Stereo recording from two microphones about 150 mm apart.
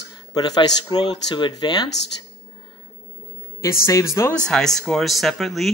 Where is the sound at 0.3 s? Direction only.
25° left (ahead or behind).